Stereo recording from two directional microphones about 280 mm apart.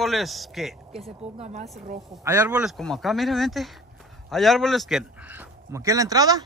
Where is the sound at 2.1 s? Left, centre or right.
Centre.